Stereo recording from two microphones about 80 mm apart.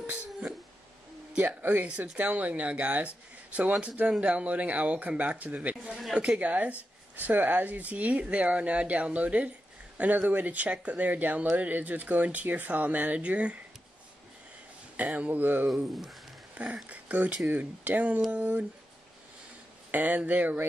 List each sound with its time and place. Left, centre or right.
1.6 s speech: right
15.0 s speech: centre
15.6 s speech: centre
19.9 s speech: centre